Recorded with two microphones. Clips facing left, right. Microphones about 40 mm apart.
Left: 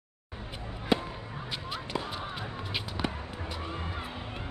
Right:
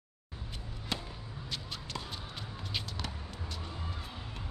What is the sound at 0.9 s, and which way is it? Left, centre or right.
Fireworks, centre.